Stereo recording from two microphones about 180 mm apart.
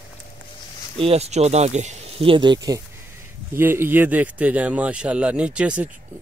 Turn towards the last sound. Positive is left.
turn(degrees=-5)  # may be behind; listen again after turning